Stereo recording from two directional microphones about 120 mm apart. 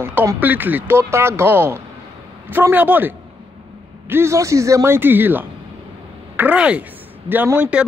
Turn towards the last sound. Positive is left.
turn(degrees=-10)  # may be behind; listen again after turning